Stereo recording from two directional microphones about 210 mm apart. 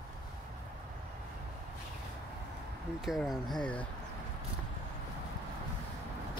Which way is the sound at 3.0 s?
Centre (ahead or behind).